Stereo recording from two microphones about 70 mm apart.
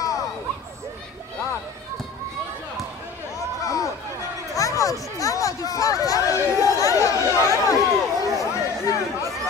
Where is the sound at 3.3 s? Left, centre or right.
Left.